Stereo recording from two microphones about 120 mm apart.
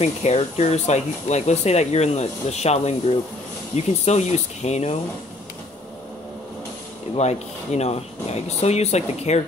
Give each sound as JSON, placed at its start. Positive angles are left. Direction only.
{"t": 0.0, "sound": "speech", "side_deg": 65}
{"t": 7.2, "sound": "speech", "side_deg": 65}